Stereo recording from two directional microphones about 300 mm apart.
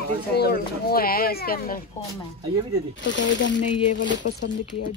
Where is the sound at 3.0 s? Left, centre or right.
Left.